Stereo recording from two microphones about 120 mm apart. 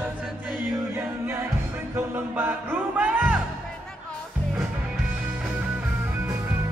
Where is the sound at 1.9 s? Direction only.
15° right (ahead or behind).